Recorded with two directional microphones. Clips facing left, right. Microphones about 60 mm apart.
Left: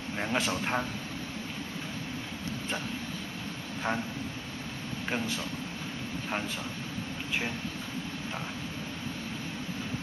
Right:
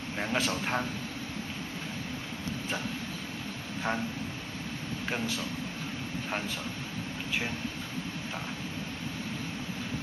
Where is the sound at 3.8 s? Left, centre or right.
Centre.